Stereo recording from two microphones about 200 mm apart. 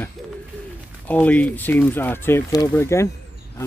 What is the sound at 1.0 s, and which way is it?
Speech, 10° left (ahead or behind).